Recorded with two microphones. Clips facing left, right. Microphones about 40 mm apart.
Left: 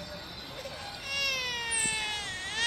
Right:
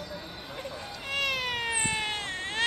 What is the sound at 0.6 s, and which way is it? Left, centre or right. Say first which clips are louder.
Cat: right 2 dB; right.